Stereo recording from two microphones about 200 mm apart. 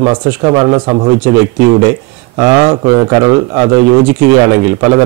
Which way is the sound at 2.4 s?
20° right (ahead or behind).